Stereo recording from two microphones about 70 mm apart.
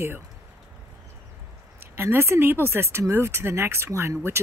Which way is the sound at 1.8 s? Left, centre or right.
Right.